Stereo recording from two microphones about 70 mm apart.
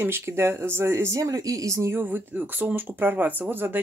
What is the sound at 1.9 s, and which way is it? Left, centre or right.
Speech, right.